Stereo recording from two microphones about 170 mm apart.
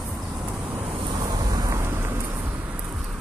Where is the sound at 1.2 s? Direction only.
25° right (ahead or behind).